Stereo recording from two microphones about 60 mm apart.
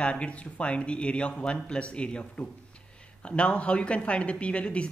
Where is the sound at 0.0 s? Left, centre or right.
Centre.